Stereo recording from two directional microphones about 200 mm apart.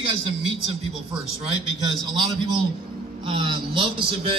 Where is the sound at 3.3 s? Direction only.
25° right (ahead or behind).